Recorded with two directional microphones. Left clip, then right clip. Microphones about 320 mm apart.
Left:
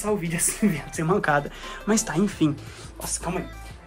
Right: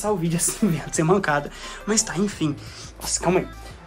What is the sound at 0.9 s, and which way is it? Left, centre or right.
Speech, centre.